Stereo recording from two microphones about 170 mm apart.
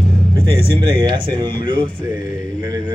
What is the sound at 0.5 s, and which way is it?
A man's voice, 30° right (ahead or behind).